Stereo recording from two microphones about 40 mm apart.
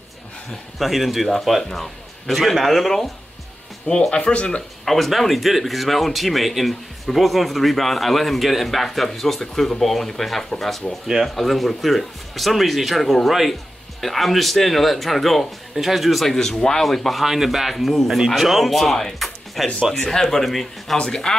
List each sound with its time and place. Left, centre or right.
0.7 s speech: centre
4.1 s speech: left
4.8 s speech: centre
20.0 s speech: centre
21.0 s speech: centre